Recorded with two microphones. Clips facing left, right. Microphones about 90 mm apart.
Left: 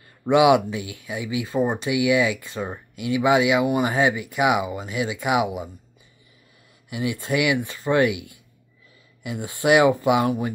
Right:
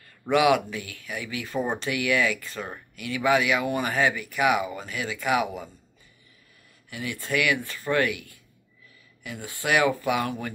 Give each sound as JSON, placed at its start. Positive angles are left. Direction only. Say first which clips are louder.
{"t": 0.2, "sound": "speech", "louder": "left 5 dB", "side_deg": 20}
{"t": 6.9, "sound": "speech", "louder": "left 5 dB", "side_deg": 20}